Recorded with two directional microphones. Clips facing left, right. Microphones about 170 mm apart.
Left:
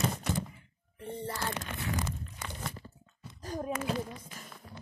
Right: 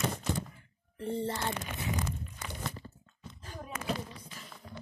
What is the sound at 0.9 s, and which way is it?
Speech, 30° right (ahead or behind).